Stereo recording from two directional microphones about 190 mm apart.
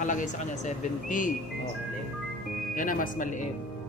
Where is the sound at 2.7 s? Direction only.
45° left (ahead or behind).